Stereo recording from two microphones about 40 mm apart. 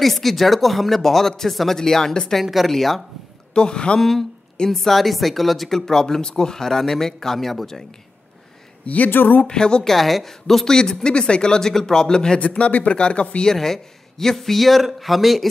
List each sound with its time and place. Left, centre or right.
0.0 s speech: centre
2.4 s speech: centre
3.5 s speech: left
4.0 s speech: centre
5.8 s speech: centre
8.8 s speech: left
9.1 s speech: left
9.5 s speech: centre
9.8 s speech: centre
10.8 s speech: left
12.4 s speech: left
13.5 s speech: centre